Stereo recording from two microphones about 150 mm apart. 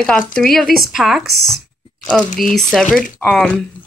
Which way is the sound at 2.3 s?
60° left (ahead or behind).